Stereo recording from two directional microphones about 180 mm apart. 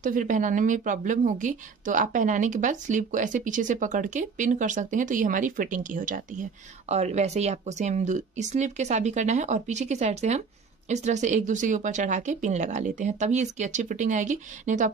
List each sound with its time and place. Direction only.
0.0 s a woman's voice: 45° right (ahead or behind)